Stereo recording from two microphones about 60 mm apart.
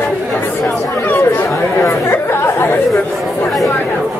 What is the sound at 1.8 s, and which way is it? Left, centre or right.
Chatter, left.